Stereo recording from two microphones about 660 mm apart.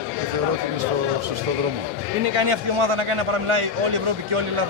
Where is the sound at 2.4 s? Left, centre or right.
Right.